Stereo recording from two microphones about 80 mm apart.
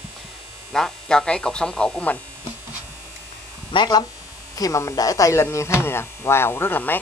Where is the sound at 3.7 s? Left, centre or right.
Left.